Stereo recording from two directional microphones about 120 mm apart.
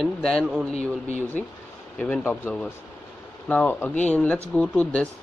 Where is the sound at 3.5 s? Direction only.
15° left (ahead or behind).